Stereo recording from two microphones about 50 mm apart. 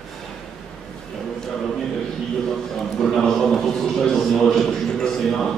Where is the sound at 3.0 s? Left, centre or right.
Centre.